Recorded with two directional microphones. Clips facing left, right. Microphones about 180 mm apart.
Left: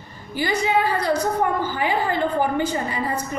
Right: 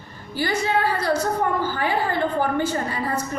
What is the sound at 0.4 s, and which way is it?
A woman's voice, 15° left (ahead or behind).